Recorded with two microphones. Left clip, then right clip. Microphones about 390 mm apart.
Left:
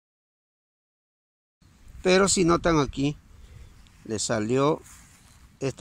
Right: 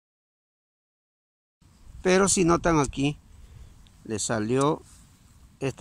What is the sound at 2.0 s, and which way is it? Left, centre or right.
Speech, centre.